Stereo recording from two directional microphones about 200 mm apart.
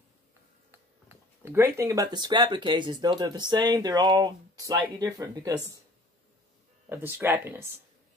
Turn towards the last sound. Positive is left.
turn(degrees=-10)  # may be behind; listen again after turning